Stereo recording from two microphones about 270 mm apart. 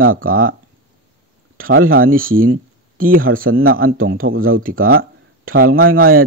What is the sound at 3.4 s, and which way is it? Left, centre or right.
Speech, right.